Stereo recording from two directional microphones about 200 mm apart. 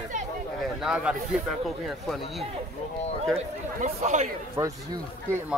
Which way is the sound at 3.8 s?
35° right (ahead or behind).